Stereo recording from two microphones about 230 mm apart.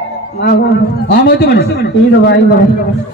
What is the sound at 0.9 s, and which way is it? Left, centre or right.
Speech, left.